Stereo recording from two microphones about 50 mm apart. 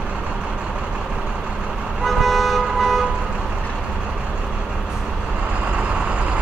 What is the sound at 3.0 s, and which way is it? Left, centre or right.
Vehicle, right.